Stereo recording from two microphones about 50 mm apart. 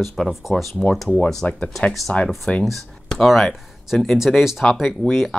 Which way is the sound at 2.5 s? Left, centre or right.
Left.